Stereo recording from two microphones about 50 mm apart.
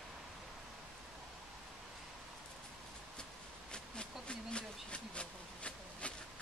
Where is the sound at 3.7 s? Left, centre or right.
Centre.